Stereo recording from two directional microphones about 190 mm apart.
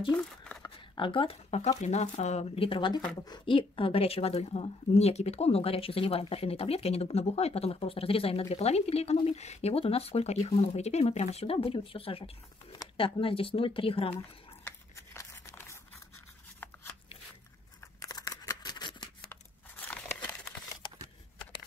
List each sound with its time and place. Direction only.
0.7 s a woman's voice: 25° left (ahead or behind)
14.6 s crumpling: 15° left (ahead or behind)
18.0 s scissors: 15° left (ahead or behind)